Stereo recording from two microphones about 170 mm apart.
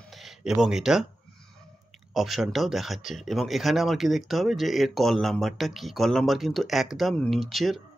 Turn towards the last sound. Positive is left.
turn(degrees=0)  # may be behind; listen again after turning